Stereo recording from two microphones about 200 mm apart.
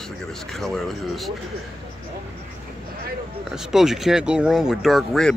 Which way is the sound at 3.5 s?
Centre (ahead or behind).